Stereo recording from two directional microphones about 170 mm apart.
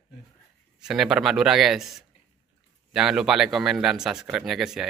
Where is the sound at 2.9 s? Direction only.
5° right (ahead or behind).